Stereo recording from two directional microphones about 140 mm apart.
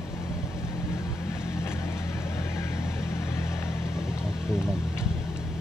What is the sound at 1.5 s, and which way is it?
Vehicle, 20° left (ahead or behind).